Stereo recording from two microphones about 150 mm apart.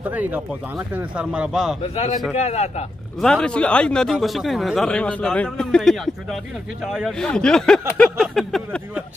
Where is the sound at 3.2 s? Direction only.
5° left (ahead or behind).